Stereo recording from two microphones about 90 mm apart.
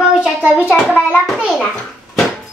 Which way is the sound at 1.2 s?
Centre (ahead or behind).